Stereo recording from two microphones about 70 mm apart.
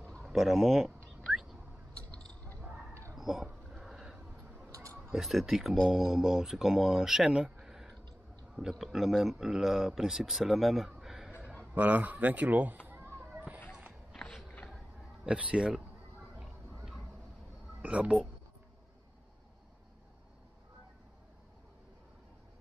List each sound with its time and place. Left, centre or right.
0.2 s speech: centre
1.3 s a sound: centre
2.1 s a sound: centre
3.2 s a sound: centre
4.6 s a sound: right
5.1 s speech: centre
11.4 s speech: right
12.8 s children playing: right
13.2 s children playing: right
14.1 s walk: centre
15.2 s speech: centre
17.8 s speech: centre